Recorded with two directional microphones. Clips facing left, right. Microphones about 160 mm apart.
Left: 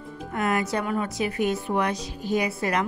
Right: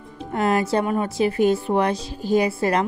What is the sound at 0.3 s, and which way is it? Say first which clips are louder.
Speech: right 5 dB; 30° right (ahead or behind).